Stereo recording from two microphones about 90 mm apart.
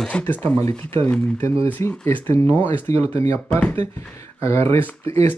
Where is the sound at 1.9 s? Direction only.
15° left (ahead or behind).